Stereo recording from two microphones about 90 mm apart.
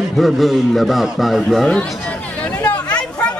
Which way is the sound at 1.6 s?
10° left (ahead or behind).